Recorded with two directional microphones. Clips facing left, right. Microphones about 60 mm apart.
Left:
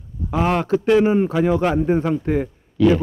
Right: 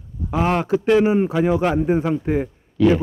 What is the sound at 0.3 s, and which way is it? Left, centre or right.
Speech, centre.